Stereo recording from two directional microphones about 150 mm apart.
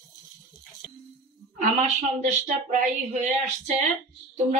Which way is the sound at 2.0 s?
50° right (ahead or behind).